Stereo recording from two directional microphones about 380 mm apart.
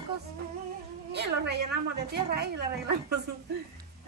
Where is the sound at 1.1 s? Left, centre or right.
Right.